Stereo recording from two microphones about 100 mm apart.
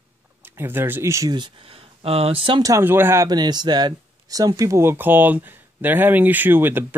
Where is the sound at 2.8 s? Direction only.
20° right (ahead or behind).